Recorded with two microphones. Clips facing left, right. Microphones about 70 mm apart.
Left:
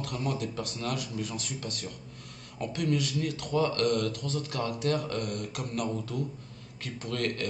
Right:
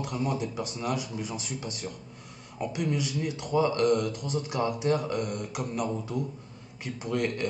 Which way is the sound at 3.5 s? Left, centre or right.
Centre.